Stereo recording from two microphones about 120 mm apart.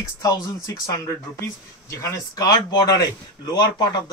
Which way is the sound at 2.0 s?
25° left (ahead or behind).